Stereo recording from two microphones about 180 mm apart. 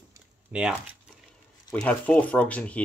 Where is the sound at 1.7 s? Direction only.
5° left (ahead or behind).